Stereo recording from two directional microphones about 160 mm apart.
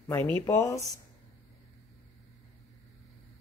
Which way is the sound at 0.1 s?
15° left (ahead or behind).